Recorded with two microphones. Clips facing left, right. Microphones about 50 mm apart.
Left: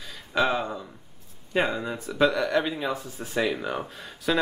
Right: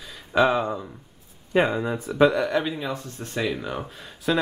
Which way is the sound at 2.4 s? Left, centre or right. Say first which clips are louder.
Even; centre.